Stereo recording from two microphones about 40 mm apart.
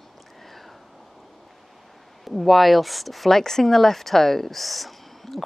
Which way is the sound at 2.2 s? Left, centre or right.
Centre.